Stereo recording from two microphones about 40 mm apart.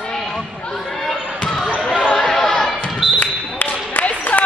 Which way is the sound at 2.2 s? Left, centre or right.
Centre.